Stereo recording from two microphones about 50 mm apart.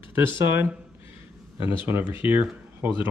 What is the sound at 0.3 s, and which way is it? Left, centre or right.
Speech, right.